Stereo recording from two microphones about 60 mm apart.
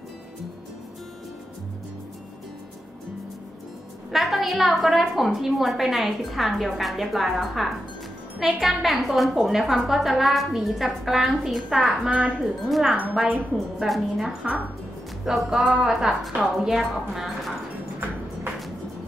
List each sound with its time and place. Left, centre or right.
4.1 s a woman's voice: centre
12.6 s a woman's voice: centre
13.1 s a woman's voice: centre
13.8 s a woman's voice: centre